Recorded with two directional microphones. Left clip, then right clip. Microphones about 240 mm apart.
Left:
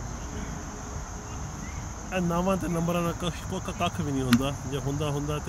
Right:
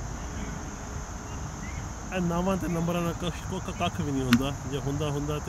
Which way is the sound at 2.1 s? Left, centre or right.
Centre.